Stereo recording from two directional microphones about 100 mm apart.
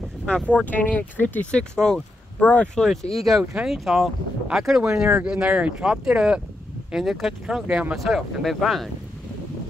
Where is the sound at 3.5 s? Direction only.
5° right (ahead or behind).